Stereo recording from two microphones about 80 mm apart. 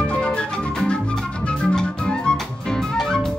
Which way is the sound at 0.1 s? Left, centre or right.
Centre.